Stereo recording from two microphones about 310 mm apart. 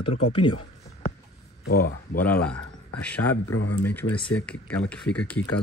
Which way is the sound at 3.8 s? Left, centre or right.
Centre.